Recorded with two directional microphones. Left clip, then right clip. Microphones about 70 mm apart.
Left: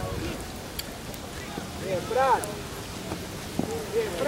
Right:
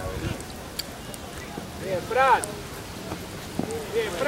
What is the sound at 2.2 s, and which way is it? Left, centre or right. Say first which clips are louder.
Speech: right 3 dB; centre.